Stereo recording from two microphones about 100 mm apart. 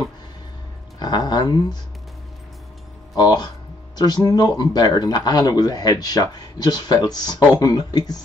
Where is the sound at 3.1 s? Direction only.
40° left (ahead or behind).